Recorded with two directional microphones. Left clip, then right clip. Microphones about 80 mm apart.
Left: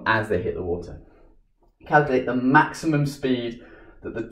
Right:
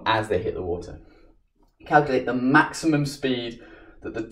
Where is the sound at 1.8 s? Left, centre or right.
Right.